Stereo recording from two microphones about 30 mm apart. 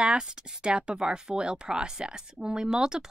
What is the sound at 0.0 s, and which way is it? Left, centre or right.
Speech, right.